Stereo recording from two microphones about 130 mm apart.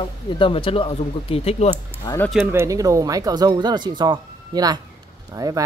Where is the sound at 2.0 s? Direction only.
30° left (ahead or behind).